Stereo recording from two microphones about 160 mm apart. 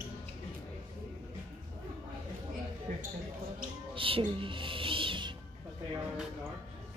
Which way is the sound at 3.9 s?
35° right (ahead or behind).